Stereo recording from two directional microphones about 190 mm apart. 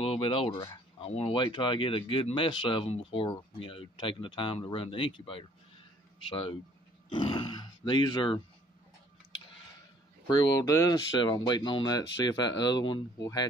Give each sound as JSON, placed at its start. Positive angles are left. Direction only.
{"t": 0.0, "sound": "speech", "side_deg": 30}
{"t": 10.2, "sound": "speech", "side_deg": 20}